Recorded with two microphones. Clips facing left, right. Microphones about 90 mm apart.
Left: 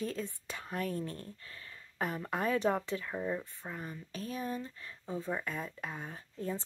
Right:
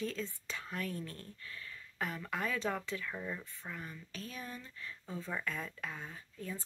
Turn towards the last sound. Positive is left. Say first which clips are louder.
# left 6 dB
turn(degrees=25)  # may be behind; listen again after turning